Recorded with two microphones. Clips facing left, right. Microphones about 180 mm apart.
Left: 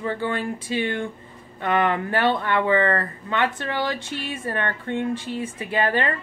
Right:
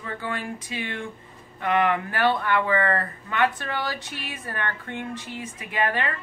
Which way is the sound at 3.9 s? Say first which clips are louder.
Left 6 dB; 25° left (ahead or behind).